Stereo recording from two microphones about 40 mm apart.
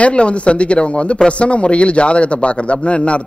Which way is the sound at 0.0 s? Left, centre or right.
Left.